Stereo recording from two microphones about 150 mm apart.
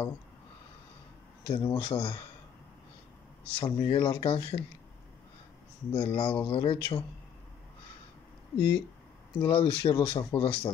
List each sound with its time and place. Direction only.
1.6 s speech: 35° left (ahead or behind)
3.4 s speech: 40° left (ahead or behind)
5.9 s speech: 40° left (ahead or behind)
8.5 s speech: 90° left
9.4 s speech: 35° left (ahead or behind)